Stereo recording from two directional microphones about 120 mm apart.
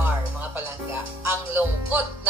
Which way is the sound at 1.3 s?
15° right (ahead or behind).